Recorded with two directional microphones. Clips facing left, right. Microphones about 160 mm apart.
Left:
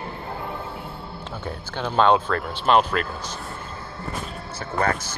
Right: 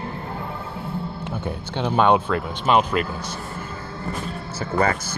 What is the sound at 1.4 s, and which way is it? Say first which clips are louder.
Speech: right 3 dB; 15° right (ahead or behind).